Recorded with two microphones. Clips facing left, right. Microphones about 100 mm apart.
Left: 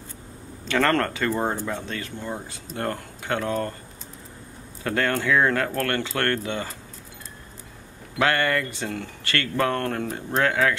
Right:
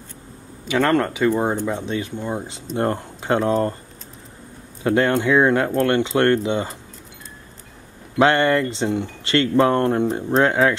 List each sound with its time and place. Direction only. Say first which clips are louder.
0.7 s speech: right 3 dB; 10° right (ahead or behind); by 3.7 s 30° right (ahead or behind)
4.8 s speech: right 6 dB; 20° right (ahead or behind)
8.2 s speech: right 6 dB; 25° right (ahead or behind)